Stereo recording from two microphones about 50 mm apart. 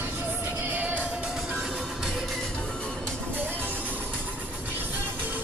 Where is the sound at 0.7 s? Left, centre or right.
Right.